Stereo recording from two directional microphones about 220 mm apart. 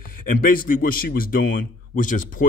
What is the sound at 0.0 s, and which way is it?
A man's voice, 40° left (ahead or behind).